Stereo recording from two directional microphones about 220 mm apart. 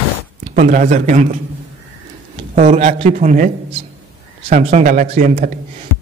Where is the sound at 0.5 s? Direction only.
35° right (ahead or behind).